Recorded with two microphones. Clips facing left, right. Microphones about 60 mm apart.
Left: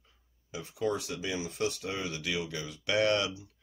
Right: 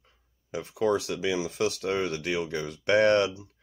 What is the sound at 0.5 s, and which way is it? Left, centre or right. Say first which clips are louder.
Speech: right 6 dB; right.